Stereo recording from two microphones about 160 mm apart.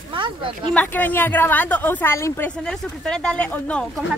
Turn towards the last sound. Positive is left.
turn(degrees=10)  # may be behind; listen again after turning